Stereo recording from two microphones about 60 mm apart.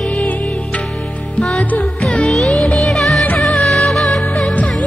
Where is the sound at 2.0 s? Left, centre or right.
Centre.